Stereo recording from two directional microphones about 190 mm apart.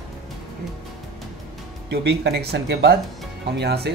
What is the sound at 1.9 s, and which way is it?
Speech, 60° right (ahead or behind).